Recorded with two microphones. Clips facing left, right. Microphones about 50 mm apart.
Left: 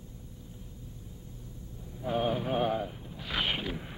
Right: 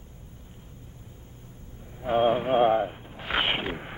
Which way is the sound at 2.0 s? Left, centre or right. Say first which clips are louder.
Right 7 dB; right.